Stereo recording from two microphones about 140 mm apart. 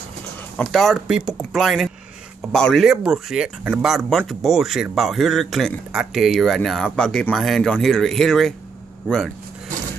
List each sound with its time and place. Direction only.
0.6 s a man's voice: centre (ahead or behind)